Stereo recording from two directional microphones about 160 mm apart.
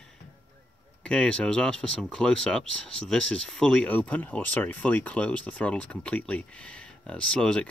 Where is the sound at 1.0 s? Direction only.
5° left (ahead or behind).